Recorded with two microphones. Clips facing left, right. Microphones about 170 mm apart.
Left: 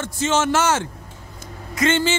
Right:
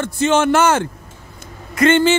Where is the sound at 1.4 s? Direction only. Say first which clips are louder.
Right 6 dB; 60° right (ahead or behind).